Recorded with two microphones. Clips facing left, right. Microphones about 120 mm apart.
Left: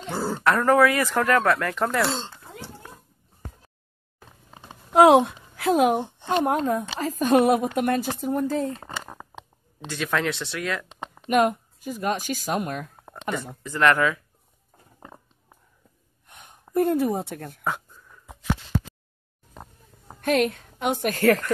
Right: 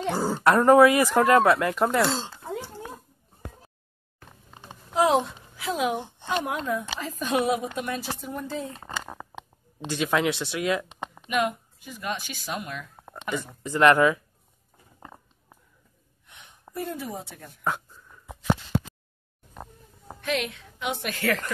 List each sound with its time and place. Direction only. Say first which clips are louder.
0.1 s speech: right 1 dB; 15° right (ahead or behind)
1.9 s speech: right 1 dB; centre (ahead or behind)
4.9 s a woman's voice: left 7 dB; 60° left (ahead or behind); by 8.7 s 45° left (ahead or behind)
9.8 s speech: right 2 dB; 15° right (ahead or behind)
11.2 s a woman's voice: left 6 dB; 45° left (ahead or behind)
13.6 s speech: right 3 dB; 20° right (ahead or behind)
16.3 s a sound: left 2 dB; 50° left (ahead or behind)
20.2 s a woman's voice: left 7 dB; 45° left (ahead or behind)